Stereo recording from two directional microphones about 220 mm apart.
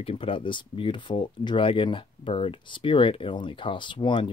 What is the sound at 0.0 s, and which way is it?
Speech, 25° left (ahead or behind).